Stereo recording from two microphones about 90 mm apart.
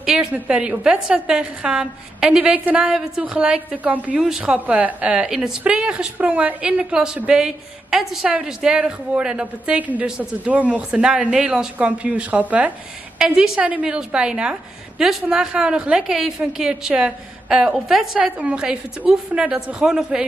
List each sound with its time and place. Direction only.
0.0 s a woman's voice: 10° right (ahead or behind)